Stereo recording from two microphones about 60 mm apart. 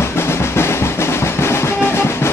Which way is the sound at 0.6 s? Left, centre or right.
Left.